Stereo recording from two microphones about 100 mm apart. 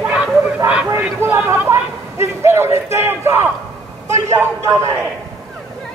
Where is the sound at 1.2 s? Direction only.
20° right (ahead or behind).